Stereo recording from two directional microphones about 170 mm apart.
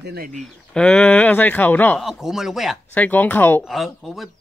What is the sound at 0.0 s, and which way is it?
Speech, 70° right (ahead or behind).